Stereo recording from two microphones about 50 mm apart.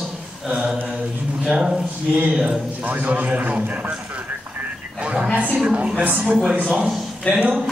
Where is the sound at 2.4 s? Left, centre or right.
Right.